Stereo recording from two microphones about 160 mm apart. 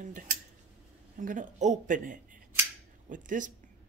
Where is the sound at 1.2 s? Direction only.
55° right (ahead or behind).